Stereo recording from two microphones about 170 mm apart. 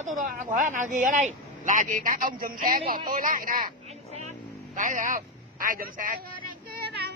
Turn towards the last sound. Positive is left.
turn(degrees=-70)  # may be behind; listen again after turning